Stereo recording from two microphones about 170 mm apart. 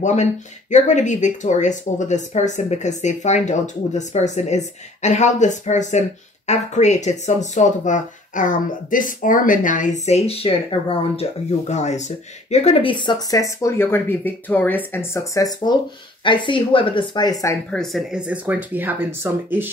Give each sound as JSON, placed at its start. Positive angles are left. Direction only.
{"t": 0.0, "sound": "speech", "side_deg": 45}
{"t": 17.6, "sound": "speech", "side_deg": 0}